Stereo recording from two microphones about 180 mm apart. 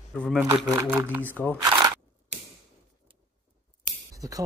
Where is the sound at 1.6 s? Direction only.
20° right (ahead or behind).